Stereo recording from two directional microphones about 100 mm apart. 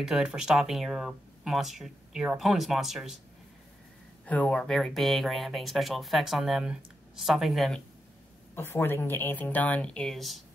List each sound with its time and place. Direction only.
0.0 s speech: 5° right (ahead or behind)
4.3 s speech: 10° left (ahead or behind)
8.5 s speech: 20° left (ahead or behind); by 10.4 s centre (ahead or behind)